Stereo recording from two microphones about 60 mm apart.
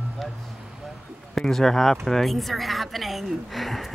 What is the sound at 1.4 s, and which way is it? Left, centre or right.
A woman's voice, centre.